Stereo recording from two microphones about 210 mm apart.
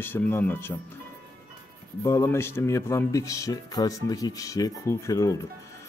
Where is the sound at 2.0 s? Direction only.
15° left (ahead or behind).